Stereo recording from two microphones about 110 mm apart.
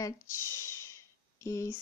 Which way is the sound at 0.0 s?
25° left (ahead or behind).